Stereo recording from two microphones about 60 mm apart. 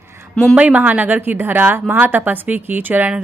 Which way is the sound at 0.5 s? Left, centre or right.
Right.